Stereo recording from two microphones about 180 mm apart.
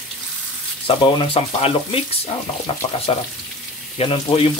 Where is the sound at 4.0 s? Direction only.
30° left (ahead or behind).